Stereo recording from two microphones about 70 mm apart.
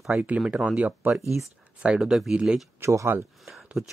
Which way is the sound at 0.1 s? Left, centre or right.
Right.